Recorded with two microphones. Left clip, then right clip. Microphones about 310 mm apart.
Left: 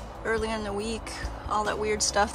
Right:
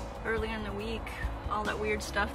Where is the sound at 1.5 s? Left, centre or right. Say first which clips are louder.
Left 5 dB; centre.